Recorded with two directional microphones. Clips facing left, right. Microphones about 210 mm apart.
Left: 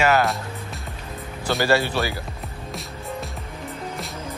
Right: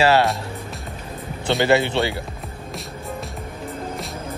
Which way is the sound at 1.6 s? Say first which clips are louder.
Right 3 dB; 20° right (ahead or behind).